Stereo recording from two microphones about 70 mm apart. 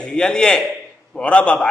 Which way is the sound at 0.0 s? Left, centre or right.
Centre.